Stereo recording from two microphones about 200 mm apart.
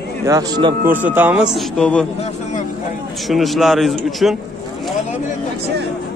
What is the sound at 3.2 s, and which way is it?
A man's voice, centre (ahead or behind).